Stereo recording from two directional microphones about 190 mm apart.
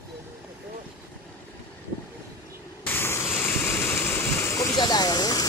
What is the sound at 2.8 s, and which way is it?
Waterfall, 10° left (ahead or behind).